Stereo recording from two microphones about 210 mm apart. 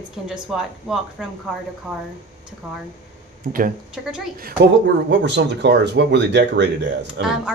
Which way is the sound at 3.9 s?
5° right (ahead or behind).